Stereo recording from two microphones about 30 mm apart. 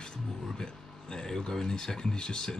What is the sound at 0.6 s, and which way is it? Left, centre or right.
Speech, left.